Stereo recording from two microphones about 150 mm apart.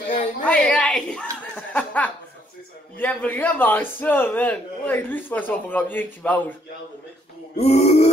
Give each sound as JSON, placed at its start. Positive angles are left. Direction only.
{"t": 0.5, "sound": "chuckle", "side_deg": 10}
{"t": 3.0, "sound": "a man's voice", "side_deg": 10}
{"t": 7.5, "sound": "grunt", "side_deg": 45}